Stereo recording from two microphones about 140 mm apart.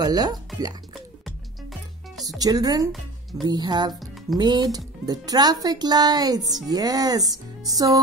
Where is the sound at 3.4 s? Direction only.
30° right (ahead or behind).